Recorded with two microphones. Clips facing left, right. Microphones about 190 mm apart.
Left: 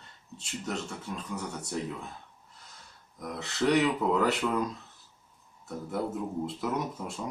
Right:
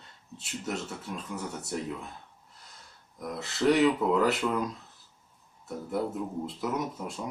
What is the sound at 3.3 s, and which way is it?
Speech, centre (ahead or behind).